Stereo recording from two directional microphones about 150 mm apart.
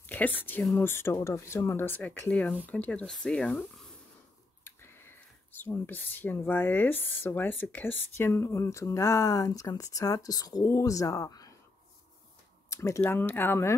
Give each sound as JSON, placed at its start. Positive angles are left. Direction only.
{"t": 0.0, "sound": "speech", "side_deg": 10}
{"t": 4.6, "sound": "speech", "side_deg": 15}
{"t": 12.6, "sound": "speech", "side_deg": 20}